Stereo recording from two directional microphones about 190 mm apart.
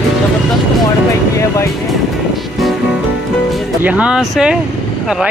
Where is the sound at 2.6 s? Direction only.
Centre (ahead or behind).